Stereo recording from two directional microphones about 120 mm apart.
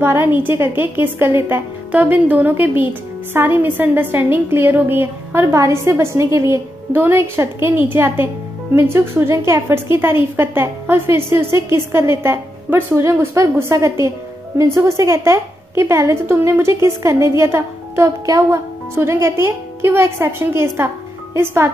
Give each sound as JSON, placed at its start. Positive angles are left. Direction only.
{"t": 0.0, "sound": "a woman's voice", "side_deg": -20}